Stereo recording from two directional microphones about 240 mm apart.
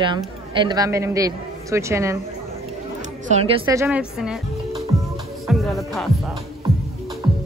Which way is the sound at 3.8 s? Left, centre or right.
Centre.